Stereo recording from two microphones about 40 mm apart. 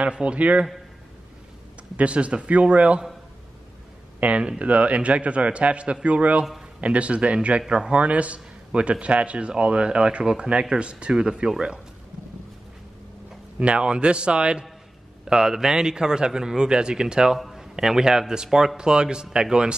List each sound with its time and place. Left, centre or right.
0.0 s speech: right
2.0 s a man's voice: right
4.2 s a man's voice: right
7.6 s a man's voice: centre
7.9 s a man's voice: right
13.6 s speech: right
15.2 s a man's voice: centre
17.4 s a sound: centre
17.7 s a man's voice: centre